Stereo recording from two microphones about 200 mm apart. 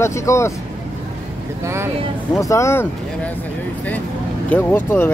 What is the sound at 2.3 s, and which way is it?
Speech, 15° left (ahead or behind).